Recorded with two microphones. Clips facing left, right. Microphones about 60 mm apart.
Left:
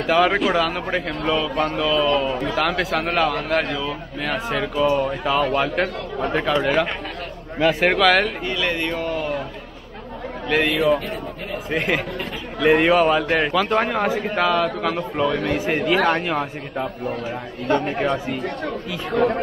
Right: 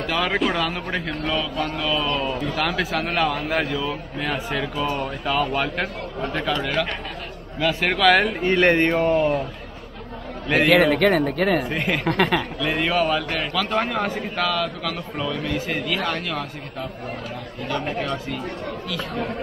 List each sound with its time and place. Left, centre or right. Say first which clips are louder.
0.0 s a man's voice: left 5 dB; centre
1.5 s mantra: left 4 dB; left
1.8 s a man's voice: left 5 dB; centre
8.5 s speech: right 6 dB; right
10.7 s speech: right 4 dB; right
11.7 s speech: left 2 dB; centre
12.1 s speech: right 9 dB; right
12.7 s a man's voice: left 4 dB; centre
17.9 s a man's voice: left 4 dB; left
19.1 s speech: left 11 dB; left